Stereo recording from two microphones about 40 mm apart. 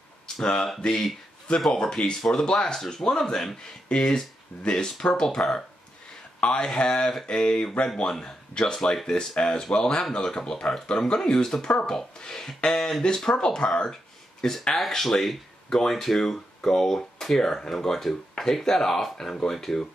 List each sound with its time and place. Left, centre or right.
0.4 s speech: centre
3.9 s speech: centre
6.4 s speech: left
11.1 s speech: centre